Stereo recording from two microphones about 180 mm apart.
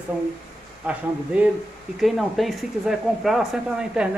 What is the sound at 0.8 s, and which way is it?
Speech, 5° right (ahead or behind).